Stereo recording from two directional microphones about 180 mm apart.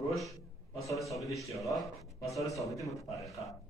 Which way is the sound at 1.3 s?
15° left (ahead or behind).